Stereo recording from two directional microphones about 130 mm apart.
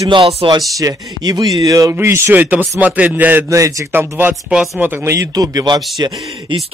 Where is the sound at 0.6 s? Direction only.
25° right (ahead or behind).